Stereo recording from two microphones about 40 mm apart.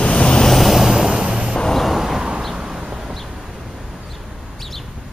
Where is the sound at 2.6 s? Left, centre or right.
Centre.